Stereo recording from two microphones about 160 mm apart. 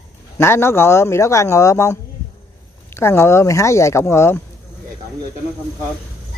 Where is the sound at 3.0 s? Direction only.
15° left (ahead or behind).